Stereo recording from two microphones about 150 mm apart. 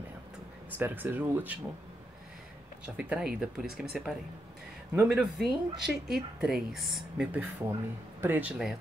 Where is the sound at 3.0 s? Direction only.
5° right (ahead or behind).